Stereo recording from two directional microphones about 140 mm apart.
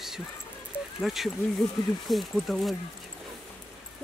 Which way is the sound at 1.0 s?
Centre (ahead or behind).